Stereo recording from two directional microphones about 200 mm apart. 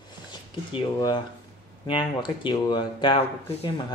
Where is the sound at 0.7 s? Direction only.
20° left (ahead or behind).